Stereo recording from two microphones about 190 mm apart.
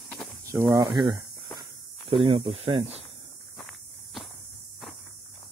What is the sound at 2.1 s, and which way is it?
Speech, 30° right (ahead or behind).